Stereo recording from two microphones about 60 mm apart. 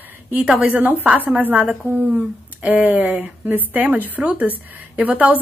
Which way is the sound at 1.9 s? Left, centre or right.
Right.